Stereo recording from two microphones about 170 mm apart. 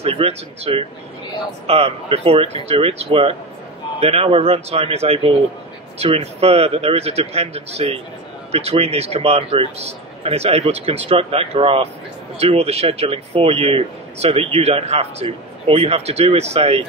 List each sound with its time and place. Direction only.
0.0 s speech: 35° right (ahead or behind)